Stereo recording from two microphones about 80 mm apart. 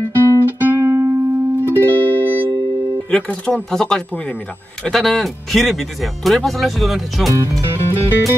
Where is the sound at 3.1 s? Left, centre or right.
Centre.